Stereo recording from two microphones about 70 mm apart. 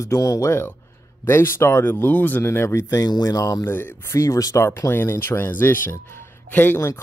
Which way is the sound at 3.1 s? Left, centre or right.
Left.